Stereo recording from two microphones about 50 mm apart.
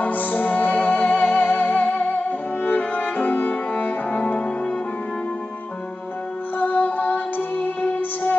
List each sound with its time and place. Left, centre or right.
0.0 s music: left
6.6 s music: left